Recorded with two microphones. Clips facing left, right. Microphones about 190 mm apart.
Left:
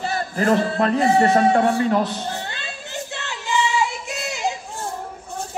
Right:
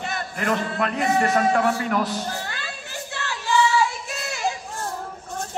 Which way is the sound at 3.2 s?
20° left (ahead or behind).